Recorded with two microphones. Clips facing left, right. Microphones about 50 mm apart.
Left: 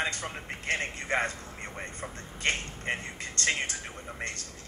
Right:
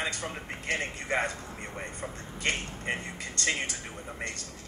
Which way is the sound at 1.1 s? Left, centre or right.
Left.